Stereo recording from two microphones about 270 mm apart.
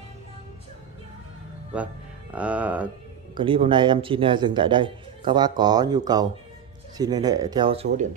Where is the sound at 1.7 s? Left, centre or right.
Centre.